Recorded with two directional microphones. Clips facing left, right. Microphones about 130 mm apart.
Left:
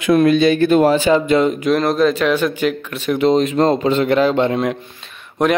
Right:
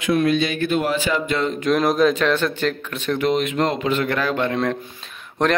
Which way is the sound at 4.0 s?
20° left (ahead or behind).